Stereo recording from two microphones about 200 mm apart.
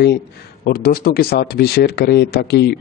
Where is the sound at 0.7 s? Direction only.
50° left (ahead or behind).